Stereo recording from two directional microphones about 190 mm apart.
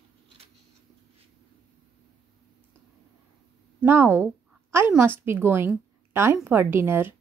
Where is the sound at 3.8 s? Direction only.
10° right (ahead or behind).